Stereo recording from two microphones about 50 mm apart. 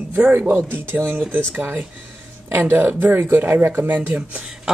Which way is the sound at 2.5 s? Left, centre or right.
Right.